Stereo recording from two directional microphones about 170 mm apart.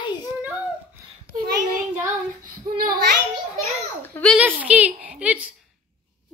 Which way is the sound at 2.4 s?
55° right (ahead or behind).